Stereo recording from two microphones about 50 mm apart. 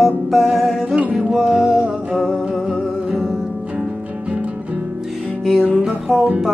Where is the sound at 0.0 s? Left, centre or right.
Centre.